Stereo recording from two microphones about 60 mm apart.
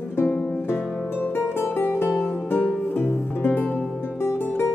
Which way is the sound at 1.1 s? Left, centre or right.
Left.